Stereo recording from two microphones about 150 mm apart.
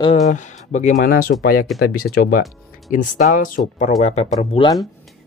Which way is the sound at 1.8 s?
90° left.